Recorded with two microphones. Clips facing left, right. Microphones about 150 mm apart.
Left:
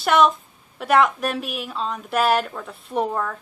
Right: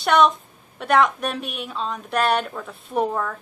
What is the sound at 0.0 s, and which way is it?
A woman's voice, centre (ahead or behind).